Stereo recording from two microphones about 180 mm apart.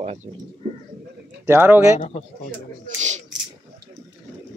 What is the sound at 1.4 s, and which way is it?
Speech, 10° right (ahead or behind).